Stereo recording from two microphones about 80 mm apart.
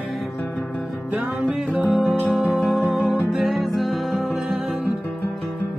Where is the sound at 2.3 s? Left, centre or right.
Centre.